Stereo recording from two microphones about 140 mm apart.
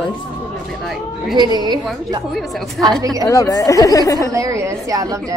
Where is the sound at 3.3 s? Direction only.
25° left (ahead or behind).